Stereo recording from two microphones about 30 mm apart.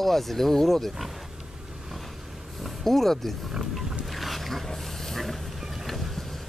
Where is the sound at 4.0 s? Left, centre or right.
Centre.